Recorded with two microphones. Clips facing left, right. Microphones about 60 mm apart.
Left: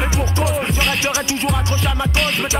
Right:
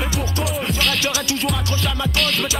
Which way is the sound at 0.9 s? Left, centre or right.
Left.